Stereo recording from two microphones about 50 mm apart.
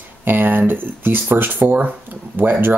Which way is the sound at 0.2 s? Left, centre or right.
Right.